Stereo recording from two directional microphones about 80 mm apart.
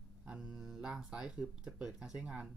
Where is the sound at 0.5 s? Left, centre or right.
Centre.